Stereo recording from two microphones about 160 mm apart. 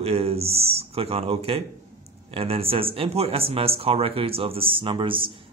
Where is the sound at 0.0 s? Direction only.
40° right (ahead or behind).